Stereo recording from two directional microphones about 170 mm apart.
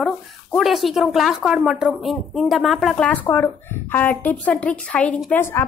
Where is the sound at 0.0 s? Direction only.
Centre (ahead or behind).